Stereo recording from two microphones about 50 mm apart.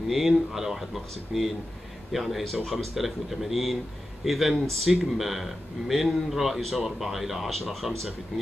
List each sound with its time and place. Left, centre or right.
0.1 s speech: centre